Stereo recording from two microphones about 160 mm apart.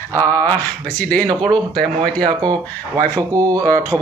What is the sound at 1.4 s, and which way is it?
Speech, 5° left (ahead or behind).